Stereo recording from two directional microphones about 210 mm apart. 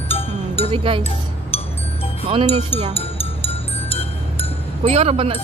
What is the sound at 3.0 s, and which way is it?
Music, 25° left (ahead or behind).